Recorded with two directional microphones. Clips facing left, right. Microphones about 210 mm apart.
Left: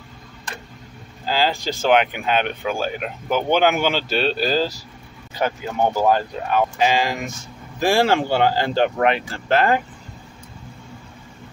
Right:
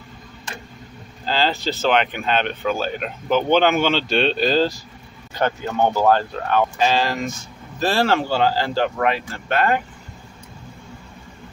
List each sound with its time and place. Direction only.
1.2 s speech: 10° left (ahead or behind); by 9.8 s 25° left (ahead or behind)